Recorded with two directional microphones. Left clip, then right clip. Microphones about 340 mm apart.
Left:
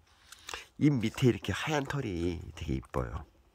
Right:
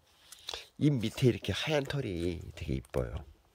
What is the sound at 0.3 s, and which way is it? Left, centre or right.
Speech, centre.